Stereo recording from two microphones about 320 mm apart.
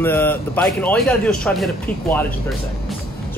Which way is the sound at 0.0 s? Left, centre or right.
Centre.